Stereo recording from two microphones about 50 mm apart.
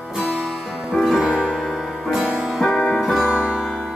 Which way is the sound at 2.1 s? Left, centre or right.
Centre.